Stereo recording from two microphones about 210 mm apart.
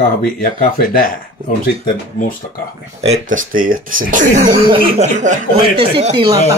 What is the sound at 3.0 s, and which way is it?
Speech, 35° right (ahead or behind).